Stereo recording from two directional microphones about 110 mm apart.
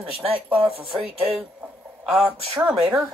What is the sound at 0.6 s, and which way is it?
Speech, 60° right (ahead or behind).